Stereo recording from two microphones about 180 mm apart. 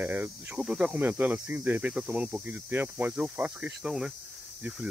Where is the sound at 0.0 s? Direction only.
10° right (ahead or behind).